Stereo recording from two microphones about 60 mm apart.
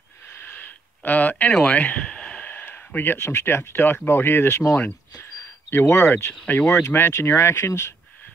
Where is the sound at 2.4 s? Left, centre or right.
Left.